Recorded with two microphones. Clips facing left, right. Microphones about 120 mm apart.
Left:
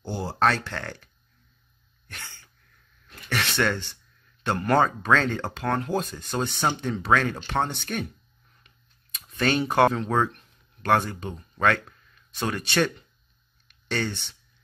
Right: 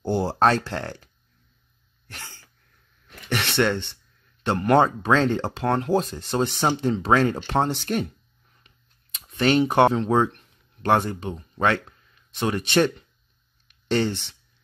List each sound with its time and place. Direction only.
0.0 s speech: 60° right (ahead or behind)
0.4 s speech: 35° right (ahead or behind)
3.3 s speech: 25° right (ahead or behind)
9.2 s speech: 25° right (ahead or behind)